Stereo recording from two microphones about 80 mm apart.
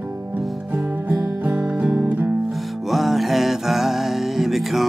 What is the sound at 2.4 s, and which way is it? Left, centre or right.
Music, centre.